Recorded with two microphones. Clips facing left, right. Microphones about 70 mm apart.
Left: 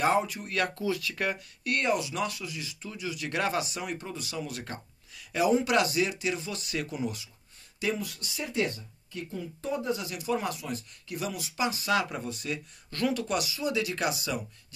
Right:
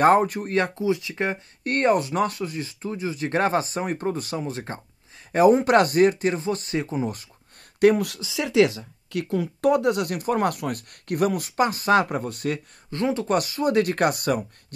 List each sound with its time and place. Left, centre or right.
0.0 s speech: right
0.6 s speech: right
1.6 s speech: right
5.3 s speech: right
7.8 s speech: right
12.9 s speech: right